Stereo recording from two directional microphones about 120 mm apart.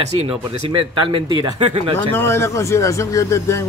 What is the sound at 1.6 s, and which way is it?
Speech, 55° right (ahead or behind).